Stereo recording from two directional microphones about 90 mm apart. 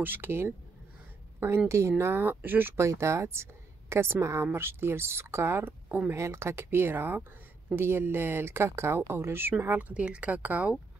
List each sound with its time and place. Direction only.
0.0 s speech: 25° right (ahead or behind)
1.7 s speech: 30° right (ahead or behind); by 10.8 s 15° right (ahead or behind)